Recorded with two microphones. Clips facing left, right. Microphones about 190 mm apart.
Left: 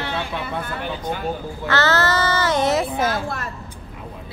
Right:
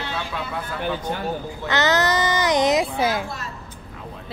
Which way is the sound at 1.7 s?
15° right (ahead or behind).